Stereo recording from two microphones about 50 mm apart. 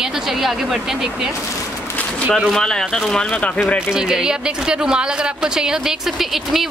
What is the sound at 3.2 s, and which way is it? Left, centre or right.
Speech, left.